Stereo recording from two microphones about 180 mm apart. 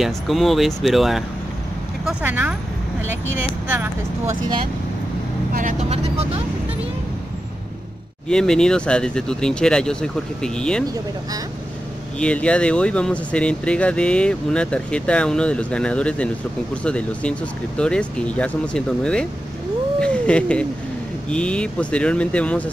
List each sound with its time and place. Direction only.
0.0 s speech: centre (ahead or behind)
5.5 s speech: 45° right (ahead or behind)
8.3 s speech: 5° left (ahead or behind)
12.2 s speech: 5° left (ahead or behind)
20.0 s cat: 5° left (ahead or behind)
21.3 s speech: 5° left (ahead or behind)